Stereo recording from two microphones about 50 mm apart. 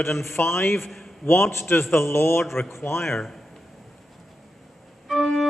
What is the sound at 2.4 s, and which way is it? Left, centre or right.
Speech, centre.